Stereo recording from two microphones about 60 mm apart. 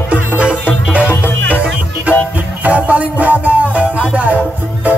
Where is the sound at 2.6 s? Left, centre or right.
Right.